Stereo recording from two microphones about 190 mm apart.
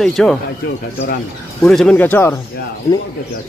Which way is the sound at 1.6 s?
5° left (ahead or behind).